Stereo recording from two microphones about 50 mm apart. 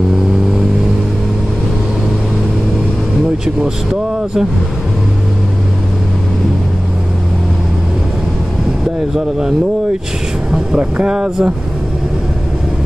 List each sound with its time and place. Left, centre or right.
3.4 s speech: centre
10.8 s speech: right